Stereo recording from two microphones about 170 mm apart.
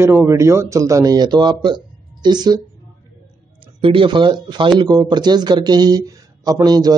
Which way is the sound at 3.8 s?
30° right (ahead or behind).